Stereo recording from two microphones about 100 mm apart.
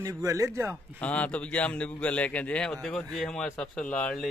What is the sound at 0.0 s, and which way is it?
Speech, 35° right (ahead or behind).